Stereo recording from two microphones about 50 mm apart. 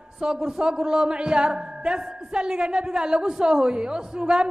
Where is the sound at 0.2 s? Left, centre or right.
Centre.